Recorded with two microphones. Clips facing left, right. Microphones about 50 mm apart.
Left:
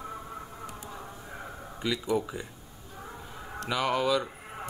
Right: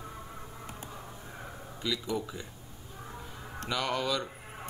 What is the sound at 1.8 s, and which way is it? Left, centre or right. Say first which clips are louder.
Speech: left 4 dB; left.